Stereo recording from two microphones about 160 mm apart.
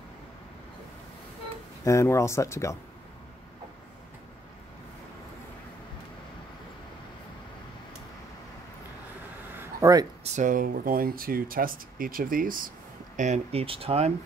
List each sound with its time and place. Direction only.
1.9 s speech: 20° left (ahead or behind)
9.6 s a sound: 20° right (ahead or behind)
10.2 s speech: 50° right (ahead or behind)